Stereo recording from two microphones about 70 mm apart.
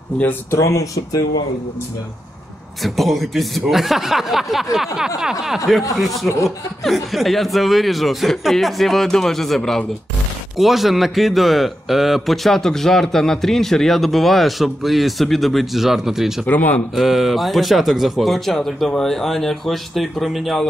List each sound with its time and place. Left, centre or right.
0.5 s speech: left
2.8 s a man's voice: centre
4.7 s a sound: centre
5.7 s a man's voice: centre
6.2 s speech: left
6.8 s a man's voice: centre
10.6 s a man's voice: centre
16.4 s speech: left
16.9 s a man's voice: centre